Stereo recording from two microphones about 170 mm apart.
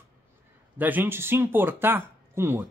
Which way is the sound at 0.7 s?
10° right (ahead or behind).